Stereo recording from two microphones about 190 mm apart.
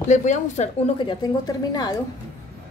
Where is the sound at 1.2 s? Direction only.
20° left (ahead or behind).